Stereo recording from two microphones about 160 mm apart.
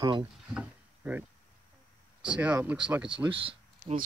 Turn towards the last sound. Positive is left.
turn(degrees=-35)  # may be behind; listen again after turning